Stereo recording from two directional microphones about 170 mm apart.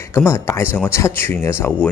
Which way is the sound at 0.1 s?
15° left (ahead or behind).